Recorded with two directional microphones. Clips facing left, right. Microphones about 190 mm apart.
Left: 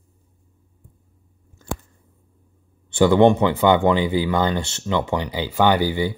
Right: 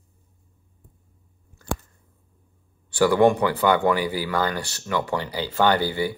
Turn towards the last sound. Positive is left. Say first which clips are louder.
# left 2 dB
turn(degrees=15)  # may be behind; listen again after turning